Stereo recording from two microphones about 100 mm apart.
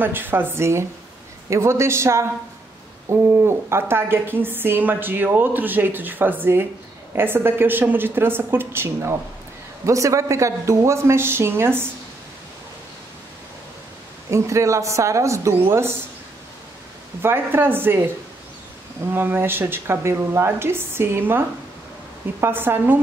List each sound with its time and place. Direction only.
0.0 s a woman's voice: 20° right (ahead or behind)
14.3 s speech: 30° right (ahead or behind)
17.2 s a woman's voice: 25° right (ahead or behind)
19.1 s a woman's voice: 20° right (ahead or behind)